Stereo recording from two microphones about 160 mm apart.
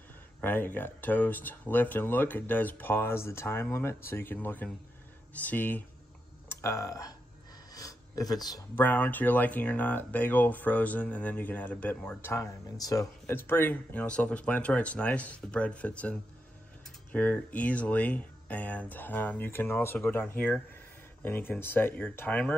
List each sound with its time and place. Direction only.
0.4 s speech: 10° left (ahead or behind)
7.7 s a sound: 20° left (ahead or behind)
8.7 s speech: 10° left (ahead or behind)